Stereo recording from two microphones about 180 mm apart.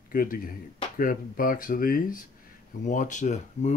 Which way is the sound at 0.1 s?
50° left (ahead or behind).